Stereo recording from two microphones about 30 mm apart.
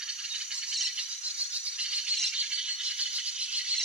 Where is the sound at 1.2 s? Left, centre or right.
Right.